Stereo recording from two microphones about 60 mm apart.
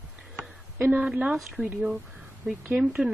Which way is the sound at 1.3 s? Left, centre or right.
Centre.